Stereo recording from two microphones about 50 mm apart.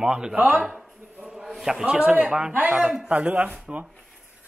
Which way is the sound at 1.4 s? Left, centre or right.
Centre.